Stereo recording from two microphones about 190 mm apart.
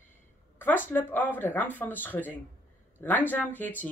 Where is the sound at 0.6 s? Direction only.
10° left (ahead or behind).